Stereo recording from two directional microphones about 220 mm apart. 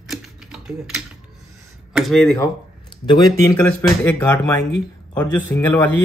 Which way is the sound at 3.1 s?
20° left (ahead or behind).